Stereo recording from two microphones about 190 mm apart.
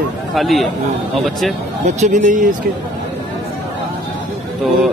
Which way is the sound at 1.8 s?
40° right (ahead or behind).